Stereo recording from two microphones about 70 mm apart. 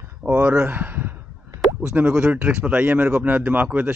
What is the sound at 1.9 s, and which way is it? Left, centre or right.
Speech, centre.